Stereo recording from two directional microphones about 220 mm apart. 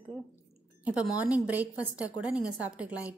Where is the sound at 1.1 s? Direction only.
5° right (ahead or behind).